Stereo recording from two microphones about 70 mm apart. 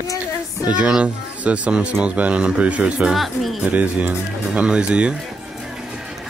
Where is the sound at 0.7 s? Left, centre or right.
Centre.